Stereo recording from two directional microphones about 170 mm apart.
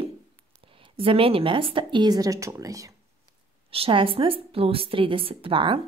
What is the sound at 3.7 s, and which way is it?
A woman's voice, 35° right (ahead or behind).